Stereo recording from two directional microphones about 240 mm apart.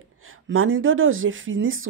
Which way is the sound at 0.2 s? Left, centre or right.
Right.